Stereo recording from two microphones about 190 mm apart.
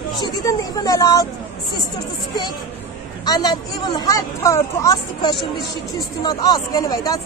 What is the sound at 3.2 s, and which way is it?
Speech, 20° left (ahead or behind).